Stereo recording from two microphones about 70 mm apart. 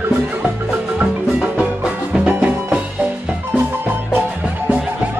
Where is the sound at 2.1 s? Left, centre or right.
Centre.